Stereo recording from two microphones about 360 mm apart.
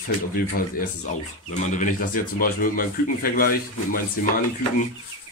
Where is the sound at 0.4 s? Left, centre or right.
Left.